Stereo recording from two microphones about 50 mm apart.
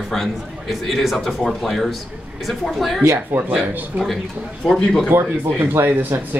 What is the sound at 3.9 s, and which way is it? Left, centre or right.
Speech, right.